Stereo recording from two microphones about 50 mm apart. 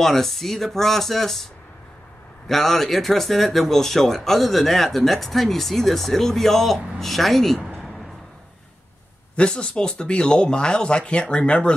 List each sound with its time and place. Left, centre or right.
0.0 s speech: centre
9.3 s speech: left